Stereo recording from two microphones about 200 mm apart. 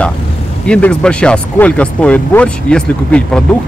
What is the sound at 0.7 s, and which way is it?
Speech, 5° left (ahead or behind).